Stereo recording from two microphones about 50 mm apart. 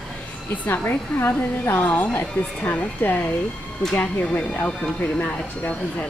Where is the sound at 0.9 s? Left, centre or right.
Left.